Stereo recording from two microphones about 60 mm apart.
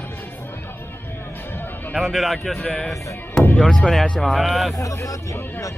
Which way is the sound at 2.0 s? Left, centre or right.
Centre.